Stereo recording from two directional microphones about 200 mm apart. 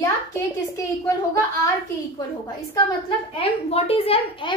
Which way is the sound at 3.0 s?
25° left (ahead or behind).